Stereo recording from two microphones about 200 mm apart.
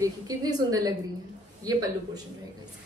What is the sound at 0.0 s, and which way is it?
A woman's voice, 20° right (ahead or behind).